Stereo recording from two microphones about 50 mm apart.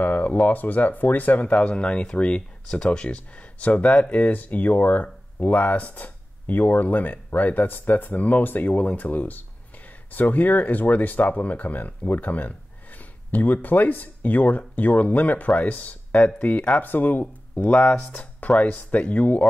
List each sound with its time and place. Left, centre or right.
0.0 s speech: left